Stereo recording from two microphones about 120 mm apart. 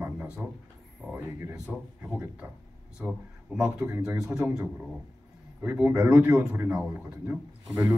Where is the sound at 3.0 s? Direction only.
5° right (ahead or behind).